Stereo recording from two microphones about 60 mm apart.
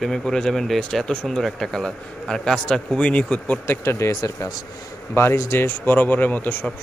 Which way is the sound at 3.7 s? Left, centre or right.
Left.